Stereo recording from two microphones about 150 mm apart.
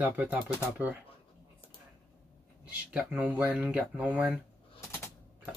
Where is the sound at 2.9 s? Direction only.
10° right (ahead or behind).